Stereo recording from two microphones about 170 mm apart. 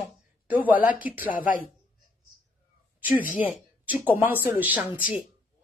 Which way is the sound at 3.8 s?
10° right (ahead or behind).